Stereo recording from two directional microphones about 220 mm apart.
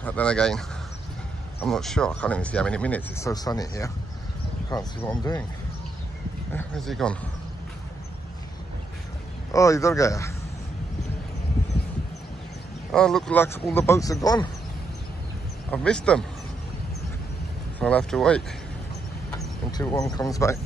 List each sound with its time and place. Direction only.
0.0 s speech: 5° left (ahead or behind)
1.6 s speech: centre (ahead or behind); by 5.4 s 15° left (ahead or behind)
6.5 s speech: centre (ahead or behind)
9.5 s speech: 15° left (ahead or behind)
12.9 s speech: 5° left (ahead or behind)
15.7 s speech: 5° left (ahead or behind)
17.7 s speech: 5° left (ahead or behind)
19.8 s speech: 15° left (ahead or behind)